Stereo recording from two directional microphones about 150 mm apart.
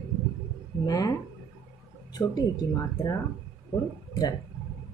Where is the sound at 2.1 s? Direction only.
25° left (ahead or behind).